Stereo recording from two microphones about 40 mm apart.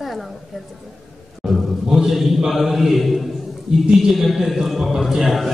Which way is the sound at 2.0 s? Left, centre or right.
Centre.